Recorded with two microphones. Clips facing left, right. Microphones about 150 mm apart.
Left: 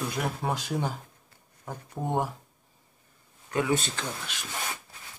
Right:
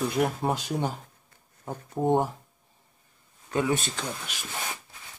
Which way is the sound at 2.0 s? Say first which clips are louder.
Right 8 dB; 25° right (ahead or behind).